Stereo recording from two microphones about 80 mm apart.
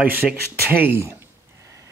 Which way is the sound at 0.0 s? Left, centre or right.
Right.